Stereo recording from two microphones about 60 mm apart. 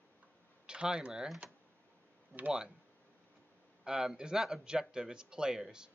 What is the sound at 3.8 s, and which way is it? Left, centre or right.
Speech, centre.